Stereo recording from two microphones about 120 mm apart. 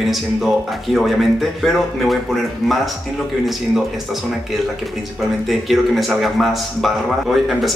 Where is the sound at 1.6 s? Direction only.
Centre (ahead or behind).